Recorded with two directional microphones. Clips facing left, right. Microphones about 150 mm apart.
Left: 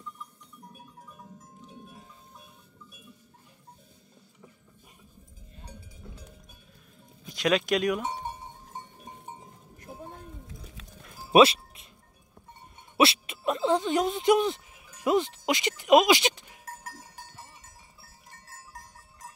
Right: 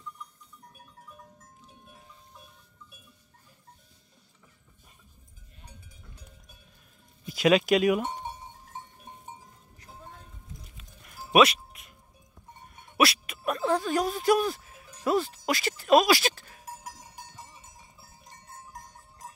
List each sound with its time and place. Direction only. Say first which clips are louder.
5.6 s cowbell: left 6 dB; 30° left (ahead or behind)
7.2 s speech: right 4 dB; 5° right (ahead or behind)
10.4 s music: left 3 dB; 90° left
11.1 s music: left 2 dB; 30° left (ahead or behind)
12.7 s a sound: left 2 dB; 25° left (ahead or behind)
15.0 s music: left 1 dB; 20° left (ahead or behind)
16.6 s sheep: even; 10° right (ahead or behind)
18.0 s a sound: right 2 dB; 20° right (ahead or behind)